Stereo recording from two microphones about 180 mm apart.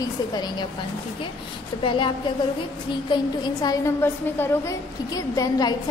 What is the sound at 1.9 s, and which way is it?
Speech, 25° left (ahead or behind).